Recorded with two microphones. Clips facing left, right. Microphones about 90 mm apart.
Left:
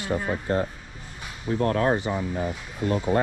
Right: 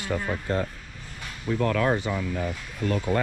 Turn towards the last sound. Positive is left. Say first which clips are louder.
# left 2 dB
turn(degrees=30)  # may be behind; listen again after turning